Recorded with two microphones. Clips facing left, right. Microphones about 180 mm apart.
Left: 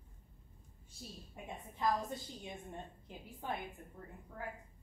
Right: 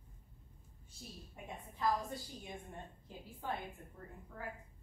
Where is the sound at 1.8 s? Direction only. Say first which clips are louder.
Left 1 dB; 20° left (ahead or behind).